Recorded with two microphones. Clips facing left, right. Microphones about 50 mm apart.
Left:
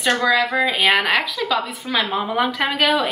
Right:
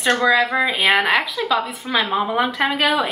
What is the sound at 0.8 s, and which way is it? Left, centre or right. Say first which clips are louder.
A woman's voice: right 2 dB; centre.